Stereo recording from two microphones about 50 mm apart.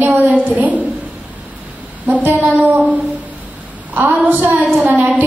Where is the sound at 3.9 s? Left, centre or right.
Right.